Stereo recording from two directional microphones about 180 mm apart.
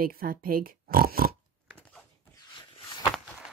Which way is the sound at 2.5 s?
25° left (ahead or behind).